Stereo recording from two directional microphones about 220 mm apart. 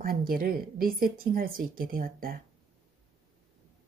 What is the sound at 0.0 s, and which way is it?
Speech, 40° right (ahead or behind).